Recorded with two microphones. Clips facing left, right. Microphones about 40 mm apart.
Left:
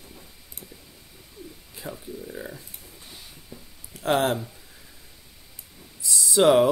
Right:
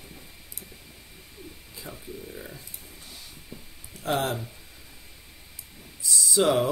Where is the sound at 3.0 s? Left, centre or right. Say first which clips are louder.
Even; centre.